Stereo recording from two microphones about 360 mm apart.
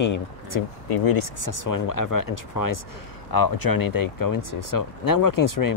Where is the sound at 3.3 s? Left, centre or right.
Left.